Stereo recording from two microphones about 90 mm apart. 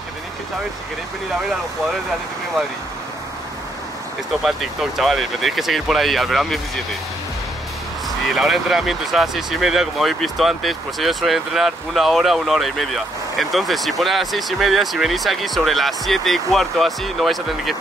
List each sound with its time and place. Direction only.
4.5 s speech: centre (ahead or behind)
8.3 s speech: centre (ahead or behind)